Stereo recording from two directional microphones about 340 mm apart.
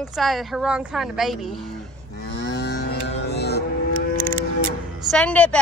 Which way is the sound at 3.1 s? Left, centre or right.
Left.